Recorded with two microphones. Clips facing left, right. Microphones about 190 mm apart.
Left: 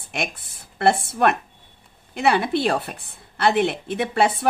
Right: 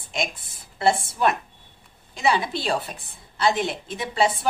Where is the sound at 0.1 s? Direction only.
60° left (ahead or behind).